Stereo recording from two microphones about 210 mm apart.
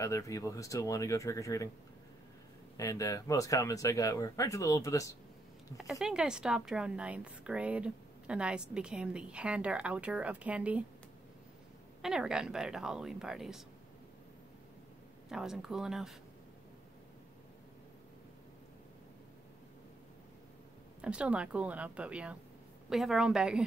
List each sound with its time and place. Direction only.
0.0 s speech: 15° left (ahead or behind)
2.8 s speech: 15° left (ahead or behind)
5.8 s a woman's voice: centre (ahead or behind)
12.0 s a woman's voice: 5° right (ahead or behind)
15.2 s a woman's voice: centre (ahead or behind)
21.0 s a woman's voice: 5° right (ahead or behind)